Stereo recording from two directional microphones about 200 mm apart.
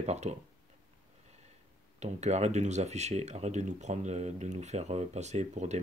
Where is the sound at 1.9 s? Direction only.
35° right (ahead or behind).